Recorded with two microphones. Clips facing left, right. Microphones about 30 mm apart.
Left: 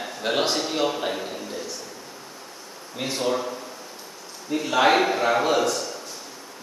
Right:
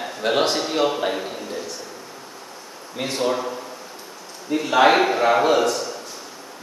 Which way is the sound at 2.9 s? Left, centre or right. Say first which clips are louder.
Right 2 dB; centre.